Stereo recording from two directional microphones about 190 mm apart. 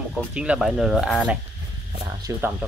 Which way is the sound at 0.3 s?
5° right (ahead or behind).